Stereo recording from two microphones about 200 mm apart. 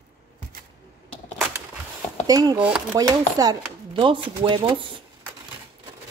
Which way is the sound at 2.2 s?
20° right (ahead or behind).